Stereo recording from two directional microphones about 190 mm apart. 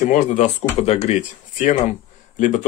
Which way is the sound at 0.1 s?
40° left (ahead or behind).